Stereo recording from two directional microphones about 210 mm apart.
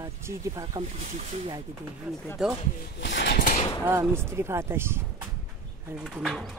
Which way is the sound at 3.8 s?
10° right (ahead or behind).